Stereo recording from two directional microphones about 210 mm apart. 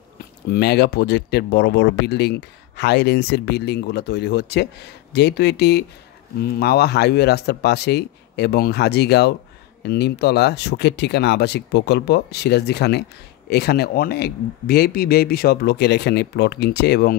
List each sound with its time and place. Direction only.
0.5 s speech: 50° left (ahead or behind)